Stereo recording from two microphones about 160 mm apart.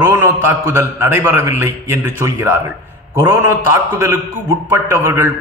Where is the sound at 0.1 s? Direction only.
15° right (ahead or behind).